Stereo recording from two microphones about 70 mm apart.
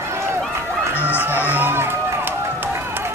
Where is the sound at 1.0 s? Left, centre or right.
Right.